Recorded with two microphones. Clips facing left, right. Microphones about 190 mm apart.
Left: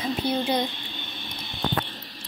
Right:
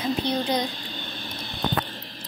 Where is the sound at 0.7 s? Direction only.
40° right (ahead or behind).